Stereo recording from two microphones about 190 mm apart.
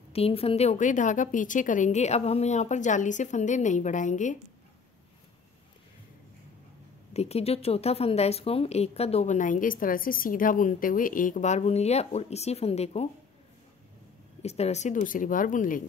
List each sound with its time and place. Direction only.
0.1 s speech: 30° left (ahead or behind)
7.2 s speech: 35° left (ahead or behind)
14.4 s speech: 35° left (ahead or behind)